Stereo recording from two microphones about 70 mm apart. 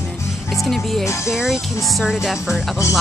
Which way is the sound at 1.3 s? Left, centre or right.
Centre.